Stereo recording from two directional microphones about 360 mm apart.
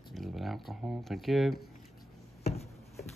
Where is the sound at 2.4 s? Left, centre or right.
Centre.